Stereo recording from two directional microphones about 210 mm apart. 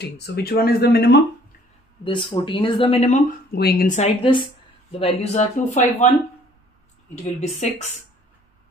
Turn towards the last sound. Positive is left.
turn(degrees=30)  # may be behind; listen again after turning